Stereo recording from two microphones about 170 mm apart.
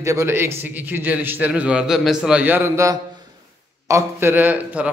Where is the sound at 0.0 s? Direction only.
20° right (ahead or behind).